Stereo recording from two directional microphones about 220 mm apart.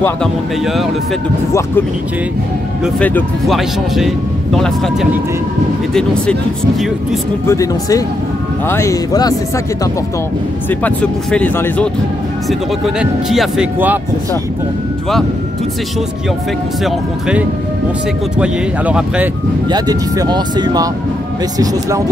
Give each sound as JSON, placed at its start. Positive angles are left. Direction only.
{"t": 2.8, "sound": "speech", "side_deg": 5}
{"t": 7.4, "sound": "speech", "side_deg": 15}
{"t": 10.7, "sound": "speech", "side_deg": 5}
{"t": 18.4, "sound": "speech", "side_deg": -5}
{"t": 19.7, "sound": "speech", "side_deg": -20}